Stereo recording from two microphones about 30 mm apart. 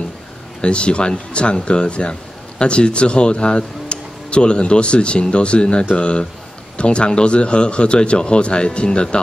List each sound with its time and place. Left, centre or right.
0.6 s speech: left